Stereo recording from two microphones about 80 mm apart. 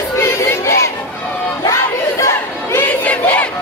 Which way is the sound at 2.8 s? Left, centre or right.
Centre.